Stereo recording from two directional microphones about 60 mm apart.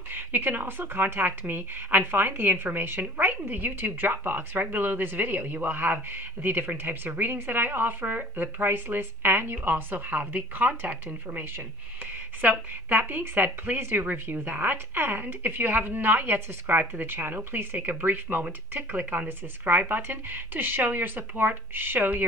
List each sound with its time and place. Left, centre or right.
0.1 s speech: right